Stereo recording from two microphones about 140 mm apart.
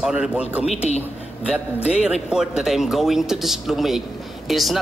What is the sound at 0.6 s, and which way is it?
Speech, 50° left (ahead or behind).